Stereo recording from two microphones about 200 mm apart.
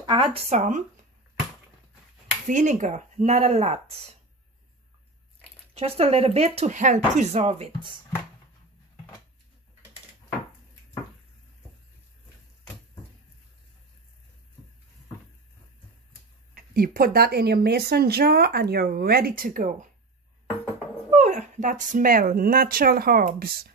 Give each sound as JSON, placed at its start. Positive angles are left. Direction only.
{"t": 0.0, "sound": "speech", "side_deg": -25}
{"t": 2.4, "sound": "speech", "side_deg": -40}
{"t": 5.8, "sound": "speech", "side_deg": -30}
{"t": 16.7, "sound": "speech", "side_deg": -45}
{"t": 21.1, "sound": "speech", "side_deg": -35}